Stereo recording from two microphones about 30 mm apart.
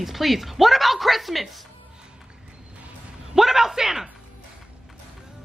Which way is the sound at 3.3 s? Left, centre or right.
Centre.